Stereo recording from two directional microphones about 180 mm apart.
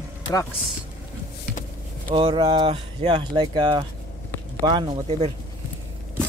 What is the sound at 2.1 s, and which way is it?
Speech, 25° right (ahead or behind).